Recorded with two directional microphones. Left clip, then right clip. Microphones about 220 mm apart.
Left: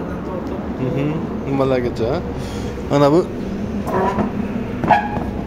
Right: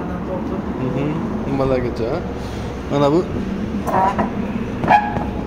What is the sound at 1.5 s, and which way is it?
Speech, 20° left (ahead or behind).